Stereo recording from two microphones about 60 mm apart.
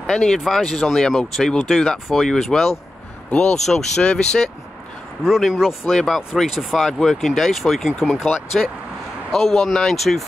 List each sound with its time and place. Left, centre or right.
0.0 s speech: centre
3.3 s speech: centre
5.2 s speech: centre